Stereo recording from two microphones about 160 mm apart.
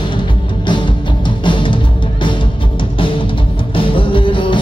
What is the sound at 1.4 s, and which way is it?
Music, 30° left (ahead or behind).